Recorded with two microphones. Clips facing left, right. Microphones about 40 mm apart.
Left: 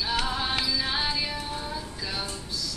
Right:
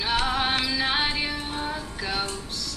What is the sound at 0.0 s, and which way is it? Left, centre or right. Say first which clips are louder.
Music: right 4 dB; right.